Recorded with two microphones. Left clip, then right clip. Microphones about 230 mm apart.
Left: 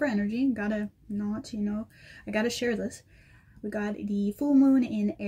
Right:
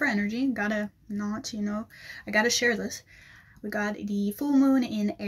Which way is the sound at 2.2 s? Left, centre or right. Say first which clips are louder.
Right 5 dB; centre.